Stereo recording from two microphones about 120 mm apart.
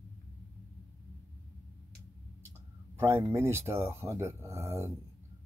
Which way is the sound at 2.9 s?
25° right (ahead or behind).